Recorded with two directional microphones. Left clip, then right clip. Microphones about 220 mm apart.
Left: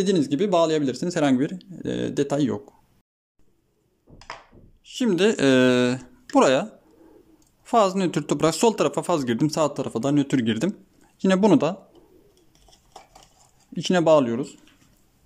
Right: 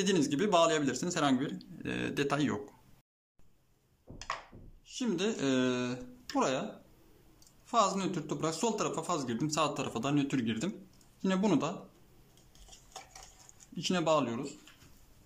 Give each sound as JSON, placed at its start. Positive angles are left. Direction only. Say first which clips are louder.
{"t": 0.0, "sound": "speech", "louder": "left 8 dB", "side_deg": 20}
{"t": 4.8, "sound": "speech", "louder": "left 13 dB", "side_deg": 40}
{"t": 13.7, "sound": "speech", "louder": "left 12 dB", "side_deg": 35}